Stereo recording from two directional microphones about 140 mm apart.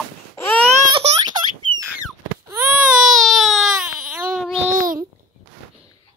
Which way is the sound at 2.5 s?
10° right (ahead or behind).